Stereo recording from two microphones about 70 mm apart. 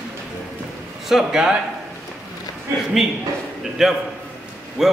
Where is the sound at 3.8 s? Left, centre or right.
Centre.